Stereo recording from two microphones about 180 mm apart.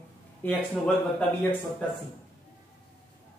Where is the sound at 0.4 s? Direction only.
10° left (ahead or behind).